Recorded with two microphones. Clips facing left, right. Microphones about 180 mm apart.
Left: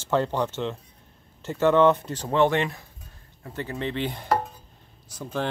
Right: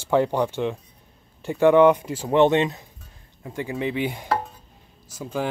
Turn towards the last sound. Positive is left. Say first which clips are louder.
# right 2 dB
turn(degrees=-10)  # may be behind; listen again after turning